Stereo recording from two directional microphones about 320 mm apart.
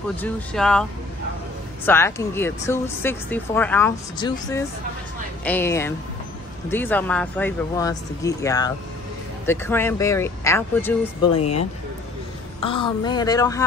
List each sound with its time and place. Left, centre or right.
0.1 s speech: centre
1.9 s speech: centre
12.5 s speech: centre